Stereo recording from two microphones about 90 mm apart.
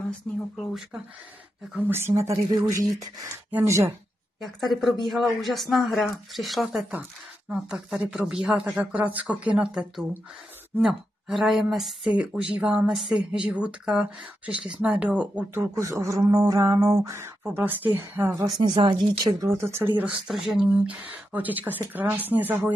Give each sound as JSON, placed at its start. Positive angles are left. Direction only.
{"t": 1.8, "sound": "speech", "side_deg": -25}
{"t": 4.4, "sound": "speech", "side_deg": 0}
{"t": 6.9, "sound": "speech", "side_deg": -15}
{"t": 15.5, "sound": "speech", "side_deg": -35}
{"t": 17.4, "sound": "speech", "side_deg": -20}
{"t": 18.6, "sound": "speech", "side_deg": -65}
{"t": 19.4, "sound": "speech", "side_deg": -30}
{"t": 20.2, "sound": "speech", "side_deg": -5}
{"t": 21.1, "sound": "speech", "side_deg": -20}